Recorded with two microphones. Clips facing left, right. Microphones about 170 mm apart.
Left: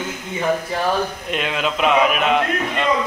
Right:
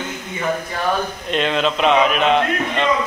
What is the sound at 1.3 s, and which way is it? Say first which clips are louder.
A man's voice: right 7 dB; 10° left (ahead or behind).